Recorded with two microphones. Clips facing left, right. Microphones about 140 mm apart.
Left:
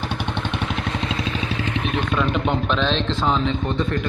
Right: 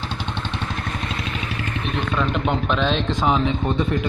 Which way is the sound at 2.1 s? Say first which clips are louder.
Even; centre (ahead or behind).